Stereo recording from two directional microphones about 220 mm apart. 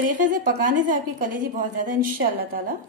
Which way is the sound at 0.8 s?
40° right (ahead or behind).